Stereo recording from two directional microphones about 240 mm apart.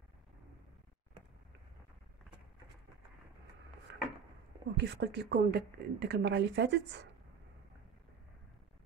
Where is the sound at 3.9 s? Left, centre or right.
Right.